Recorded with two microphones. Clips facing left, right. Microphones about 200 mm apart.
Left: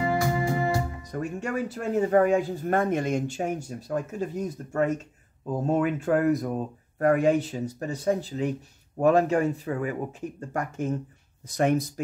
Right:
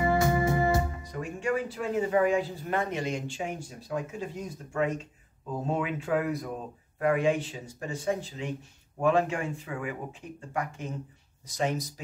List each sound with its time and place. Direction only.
0.0 s music: 20° right (ahead or behind)
1.1 s speech: 45° left (ahead or behind)
11.4 s speech: 55° left (ahead or behind)